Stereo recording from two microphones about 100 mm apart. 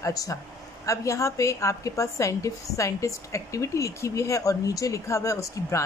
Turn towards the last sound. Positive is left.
turn(degrees=35)  # may be behind; listen again after turning